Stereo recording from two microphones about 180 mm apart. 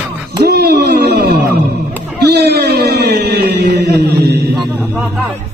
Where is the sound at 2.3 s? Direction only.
65° right (ahead or behind).